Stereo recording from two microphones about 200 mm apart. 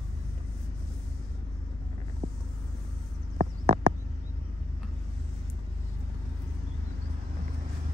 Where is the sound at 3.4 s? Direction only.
30° right (ahead or behind).